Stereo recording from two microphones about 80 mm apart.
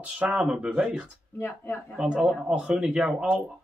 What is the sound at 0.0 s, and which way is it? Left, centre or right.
Speech, centre.